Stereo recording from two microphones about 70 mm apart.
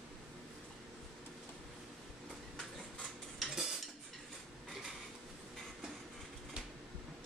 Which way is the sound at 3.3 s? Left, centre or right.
Centre.